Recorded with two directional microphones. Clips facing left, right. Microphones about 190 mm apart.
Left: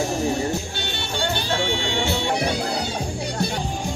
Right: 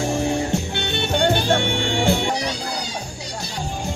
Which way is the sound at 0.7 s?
60° right (ahead or behind).